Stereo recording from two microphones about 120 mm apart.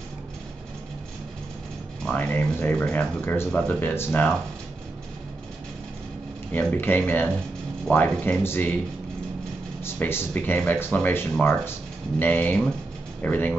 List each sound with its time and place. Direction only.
2.0 s speech: 15° left (ahead or behind)
6.5 s speech: 15° left (ahead or behind)
9.8 s speech: 20° left (ahead or behind)